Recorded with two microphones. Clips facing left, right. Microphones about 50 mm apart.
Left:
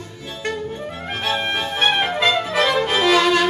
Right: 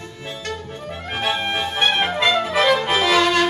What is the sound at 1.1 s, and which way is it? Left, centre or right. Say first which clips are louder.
Music: even; centre.